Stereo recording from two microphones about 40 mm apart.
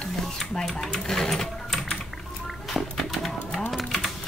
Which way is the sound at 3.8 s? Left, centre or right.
Centre.